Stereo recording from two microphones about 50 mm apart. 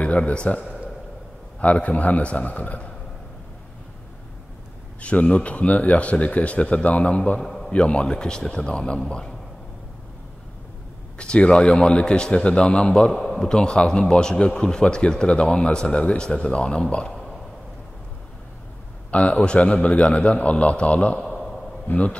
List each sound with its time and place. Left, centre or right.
0.0 s a man's voice: left
5.0 s a man's voice: left
7.4 s a sound: centre
7.7 s a man's voice: left
11.1 s a man's voice: centre
13.1 s a man's voice: centre
13.5 s a man's voice: centre
19.0 s a man's voice: left
21.2 s a sound: centre
21.8 s a man's voice: left